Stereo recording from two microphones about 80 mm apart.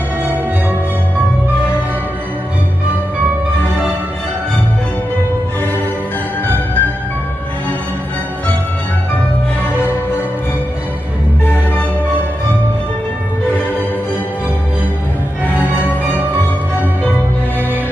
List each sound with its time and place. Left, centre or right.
0.2 s music: right
6.4 s music: left
15.6 s music: right